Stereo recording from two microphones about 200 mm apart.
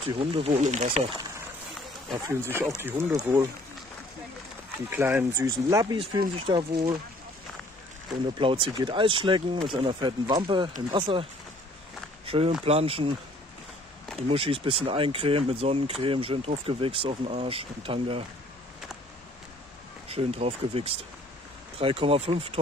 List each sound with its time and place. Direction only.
0.0 s speech: 25° right (ahead or behind)
2.5 s speech: 10° right (ahead or behind)
4.8 s speech: 10° right (ahead or behind); by 6.9 s 30° right (ahead or behind)
8.4 s speech: 25° right (ahead or behind)
12.3 s speech: 30° right (ahead or behind)
14.2 s speech: 30° right (ahead or behind)
20.1 s speech: 30° right (ahead or behind)